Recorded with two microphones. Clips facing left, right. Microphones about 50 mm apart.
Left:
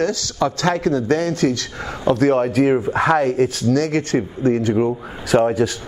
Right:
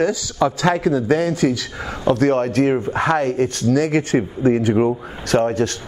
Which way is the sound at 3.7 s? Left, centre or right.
Centre.